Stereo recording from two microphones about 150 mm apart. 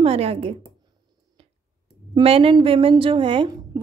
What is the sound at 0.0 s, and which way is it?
Speech, 40° right (ahead or behind).